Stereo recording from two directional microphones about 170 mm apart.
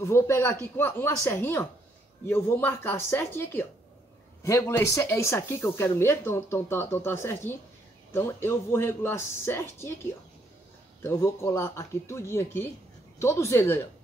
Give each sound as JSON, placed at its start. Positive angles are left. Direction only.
{"t": 0.0, "sound": "speech", "side_deg": 15}
{"t": 11.0, "sound": "speech", "side_deg": 15}